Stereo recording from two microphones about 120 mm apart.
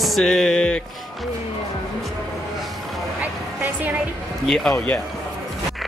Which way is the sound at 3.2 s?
15° right (ahead or behind).